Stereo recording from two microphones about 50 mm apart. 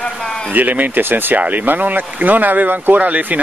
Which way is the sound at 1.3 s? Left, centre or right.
Right.